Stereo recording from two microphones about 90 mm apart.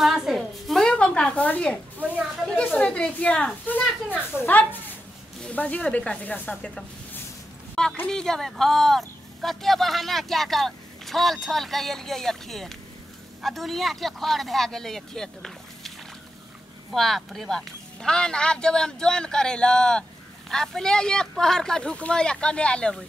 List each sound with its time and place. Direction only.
0.0 s a sound: 5° right (ahead or behind); by 1.8 s 15° left (ahead or behind)
2.0 s speech: 15° right (ahead or behind)
2.4 s speech: 15° left (ahead or behind)
5.4 s speech: 15° left (ahead or behind)
7.8 s a woman's voice: 5° left (ahead or behind)
16.9 s speech: centre (ahead or behind)